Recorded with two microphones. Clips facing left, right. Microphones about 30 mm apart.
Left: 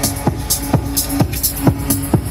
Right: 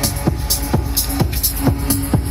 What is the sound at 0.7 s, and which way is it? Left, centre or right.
Music, left.